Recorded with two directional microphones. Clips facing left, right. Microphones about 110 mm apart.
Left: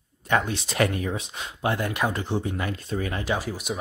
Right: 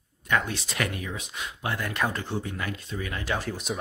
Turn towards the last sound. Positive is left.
turn(degrees=5)  # may be behind; listen again after turning